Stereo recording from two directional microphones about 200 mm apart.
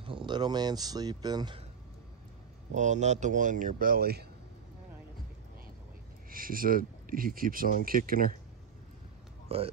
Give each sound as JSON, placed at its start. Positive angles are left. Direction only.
{"t": 0.0, "sound": "speech", "side_deg": -25}
{"t": 2.7, "sound": "speech", "side_deg": -35}
{"t": 6.3, "sound": "speech", "side_deg": -45}
{"t": 9.5, "sound": "speech", "side_deg": -30}